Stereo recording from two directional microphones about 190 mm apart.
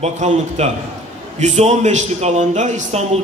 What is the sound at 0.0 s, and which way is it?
A man's voice, 35° right (ahead or behind).